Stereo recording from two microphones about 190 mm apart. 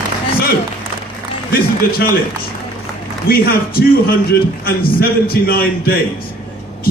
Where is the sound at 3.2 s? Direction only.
50° left (ahead or behind).